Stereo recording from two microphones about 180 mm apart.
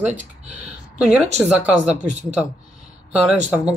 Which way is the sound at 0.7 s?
5° right (ahead or behind).